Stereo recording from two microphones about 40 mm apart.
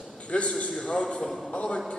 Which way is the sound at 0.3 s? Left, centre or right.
Left.